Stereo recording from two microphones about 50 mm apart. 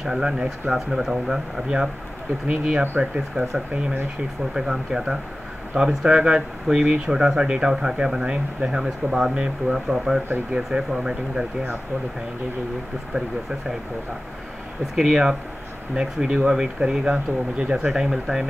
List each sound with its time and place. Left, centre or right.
0.0 s speech: centre
2.4 s speech: right
2.8 s speech: right
3.3 s speech: right
4.6 s speech: centre
15.0 s speech: centre